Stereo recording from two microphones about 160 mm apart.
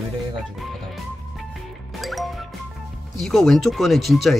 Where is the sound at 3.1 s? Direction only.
Centre (ahead or behind).